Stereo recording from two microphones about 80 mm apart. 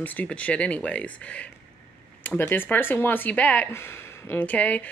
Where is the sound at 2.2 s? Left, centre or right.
Left.